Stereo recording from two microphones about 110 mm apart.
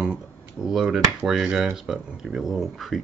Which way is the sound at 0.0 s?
5° right (ahead or behind).